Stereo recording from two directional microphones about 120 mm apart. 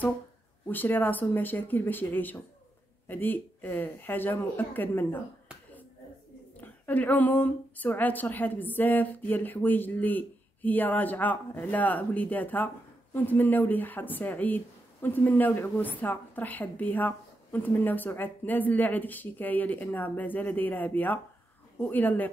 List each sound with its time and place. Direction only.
0.7 s speech: 15° left (ahead or behind)
6.6 s speech: 15° left (ahead or behind)